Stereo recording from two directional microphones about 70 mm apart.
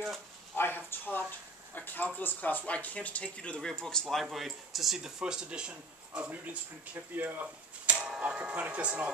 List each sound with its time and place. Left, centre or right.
0.6 s a sound: left
2.1 s speech: left
4.1 s speech: centre
6.3 s speech: right
7.9 s speech: centre